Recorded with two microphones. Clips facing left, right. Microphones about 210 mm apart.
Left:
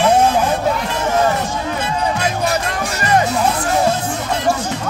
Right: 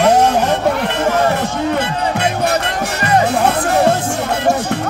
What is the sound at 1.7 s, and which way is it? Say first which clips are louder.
Music: right 2 dB; 60° right (ahead or behind).